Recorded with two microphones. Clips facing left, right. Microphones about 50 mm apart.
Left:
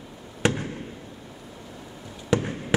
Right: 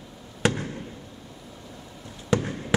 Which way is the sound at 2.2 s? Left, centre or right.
Centre.